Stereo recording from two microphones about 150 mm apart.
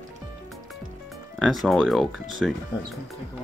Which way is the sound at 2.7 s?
30° left (ahead or behind).